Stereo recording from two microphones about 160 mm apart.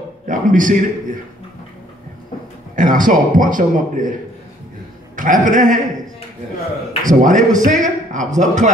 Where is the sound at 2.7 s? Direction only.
55° right (ahead or behind).